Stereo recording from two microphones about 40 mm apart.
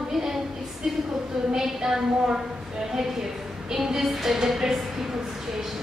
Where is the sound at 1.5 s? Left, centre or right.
Centre.